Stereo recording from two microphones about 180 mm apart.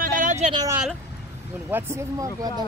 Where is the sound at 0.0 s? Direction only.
45° right (ahead or behind).